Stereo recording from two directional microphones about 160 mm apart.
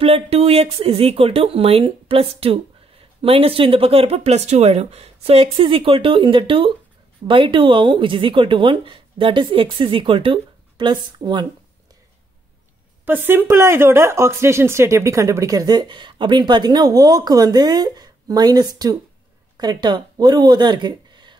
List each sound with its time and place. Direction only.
0.0 s speech: 40° right (ahead or behind)
13.0 s speech: 10° right (ahead or behind); by 21.4 s 30° right (ahead or behind)